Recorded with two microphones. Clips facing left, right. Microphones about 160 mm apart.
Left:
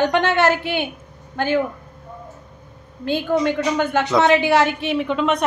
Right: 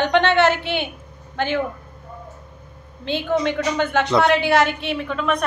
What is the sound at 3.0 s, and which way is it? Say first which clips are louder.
A woman's voice: left 2 dB; 10° left (ahead or behind).